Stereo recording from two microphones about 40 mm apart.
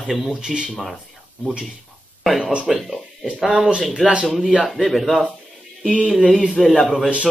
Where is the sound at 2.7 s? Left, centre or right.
Centre.